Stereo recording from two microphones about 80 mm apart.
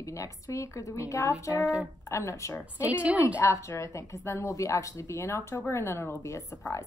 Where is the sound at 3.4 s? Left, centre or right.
Left.